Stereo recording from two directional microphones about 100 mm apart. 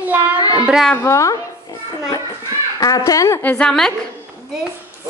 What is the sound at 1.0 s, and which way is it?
Speech, 30° left (ahead or behind).